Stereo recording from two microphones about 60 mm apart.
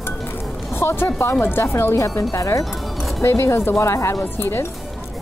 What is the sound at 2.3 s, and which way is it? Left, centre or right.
Speech, left.